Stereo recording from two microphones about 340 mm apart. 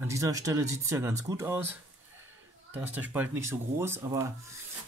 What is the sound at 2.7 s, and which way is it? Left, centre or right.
Speech, centre.